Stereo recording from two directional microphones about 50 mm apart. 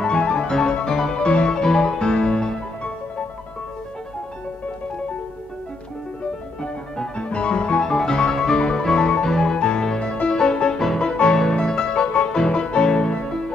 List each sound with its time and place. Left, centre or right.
0.0 s music: centre
6.6 s music: centre